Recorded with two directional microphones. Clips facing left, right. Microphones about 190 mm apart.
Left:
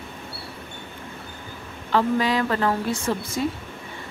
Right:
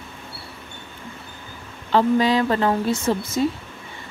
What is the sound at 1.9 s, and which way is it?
A woman's voice, 25° right (ahead or behind).